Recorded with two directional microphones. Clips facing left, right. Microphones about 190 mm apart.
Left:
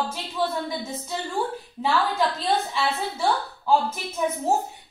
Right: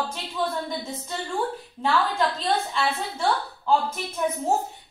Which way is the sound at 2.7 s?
5° left (ahead or behind).